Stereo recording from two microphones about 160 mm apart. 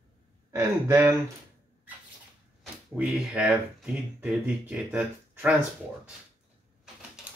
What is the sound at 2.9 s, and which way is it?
Speech, 10° right (ahead or behind).